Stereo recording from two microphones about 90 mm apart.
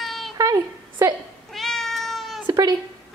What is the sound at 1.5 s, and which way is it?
Cat, 5° left (ahead or behind).